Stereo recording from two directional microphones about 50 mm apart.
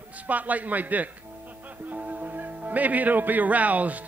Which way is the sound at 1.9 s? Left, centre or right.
Right.